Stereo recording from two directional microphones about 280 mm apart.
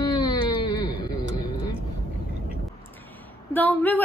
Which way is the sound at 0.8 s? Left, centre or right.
Centre.